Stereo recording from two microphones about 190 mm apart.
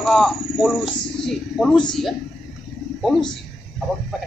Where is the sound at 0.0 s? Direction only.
Centre (ahead or behind).